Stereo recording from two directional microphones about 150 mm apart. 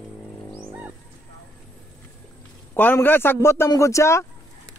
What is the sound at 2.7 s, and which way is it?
A man's voice, 15° left (ahead or behind).